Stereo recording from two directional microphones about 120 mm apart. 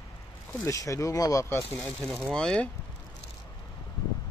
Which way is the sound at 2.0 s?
5° left (ahead or behind).